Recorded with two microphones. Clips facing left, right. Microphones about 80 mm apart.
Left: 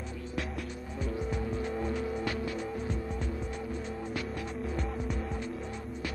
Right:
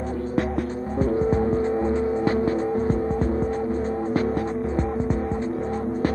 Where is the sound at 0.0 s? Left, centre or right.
Right.